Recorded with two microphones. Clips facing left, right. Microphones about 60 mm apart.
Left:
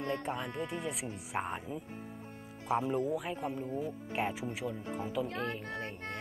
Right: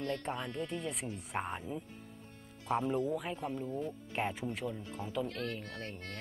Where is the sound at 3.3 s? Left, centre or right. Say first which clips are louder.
Left 1 dB; centre.